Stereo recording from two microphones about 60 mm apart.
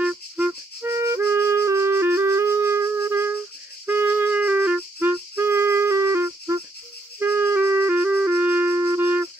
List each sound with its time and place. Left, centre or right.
0.0 s music: centre
0.7 s music: right
1.2 s music: right
3.3 s music: right
7.2 s music: right